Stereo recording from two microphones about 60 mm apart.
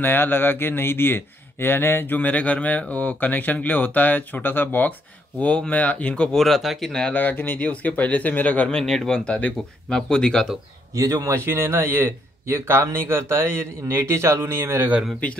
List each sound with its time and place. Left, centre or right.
0.0 s speech: left
2.1 s speech: left
6.3 s speech: centre
6.9 s speech: centre
7.2 s speech: left
8.6 s speech: centre
11.0 s speech: right
11.4 s speech: right